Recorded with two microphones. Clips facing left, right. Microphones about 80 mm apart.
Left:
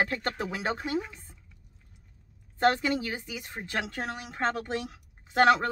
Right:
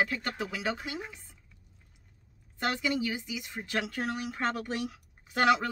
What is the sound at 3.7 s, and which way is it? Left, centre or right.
A woman's voice, left.